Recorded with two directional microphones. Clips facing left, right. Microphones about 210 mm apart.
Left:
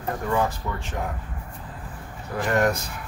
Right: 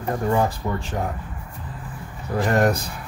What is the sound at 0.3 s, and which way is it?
Speech, 35° right (ahead or behind).